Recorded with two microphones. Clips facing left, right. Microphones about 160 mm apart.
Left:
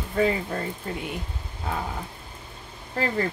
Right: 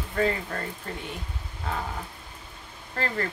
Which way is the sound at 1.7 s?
15° left (ahead or behind).